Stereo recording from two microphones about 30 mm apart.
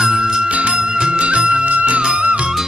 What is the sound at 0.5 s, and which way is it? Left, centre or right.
Music, right.